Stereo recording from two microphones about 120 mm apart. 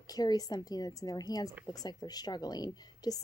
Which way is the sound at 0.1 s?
35° left (ahead or behind).